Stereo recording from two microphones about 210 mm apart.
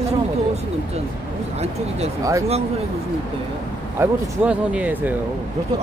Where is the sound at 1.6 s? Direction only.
30° right (ahead or behind).